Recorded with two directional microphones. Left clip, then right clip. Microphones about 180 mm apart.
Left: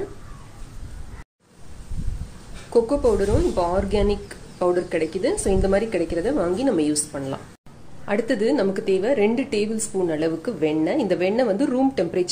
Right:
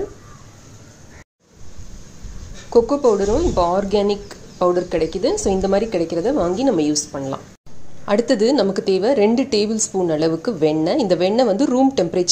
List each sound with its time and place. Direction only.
2.7 s a woman's voice: 20° right (ahead or behind)
8.0 s a woman's voice: 25° right (ahead or behind)